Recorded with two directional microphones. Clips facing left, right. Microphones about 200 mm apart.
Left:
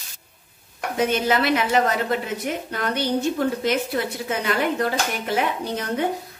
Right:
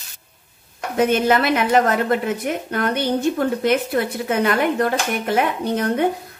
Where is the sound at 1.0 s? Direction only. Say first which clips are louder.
Right 4 dB; 55° right (ahead or behind).